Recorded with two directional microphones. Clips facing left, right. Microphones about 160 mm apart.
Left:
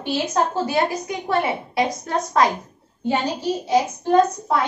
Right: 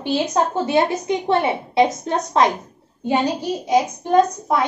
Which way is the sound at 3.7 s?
15° right (ahead or behind).